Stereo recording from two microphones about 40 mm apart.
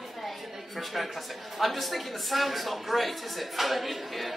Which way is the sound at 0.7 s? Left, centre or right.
Centre.